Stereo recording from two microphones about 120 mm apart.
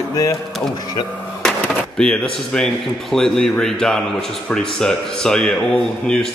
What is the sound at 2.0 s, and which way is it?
Speech, 5° left (ahead or behind).